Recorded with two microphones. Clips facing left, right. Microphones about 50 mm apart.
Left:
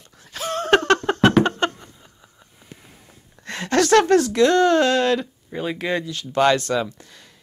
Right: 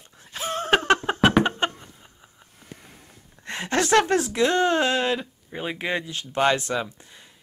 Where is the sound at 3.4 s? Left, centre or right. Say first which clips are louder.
Left 5 dB; right.